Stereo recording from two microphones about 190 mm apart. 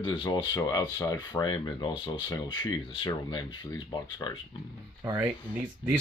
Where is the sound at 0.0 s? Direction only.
25° left (ahead or behind).